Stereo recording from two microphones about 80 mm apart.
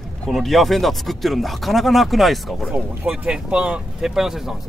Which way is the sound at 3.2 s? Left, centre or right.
Centre.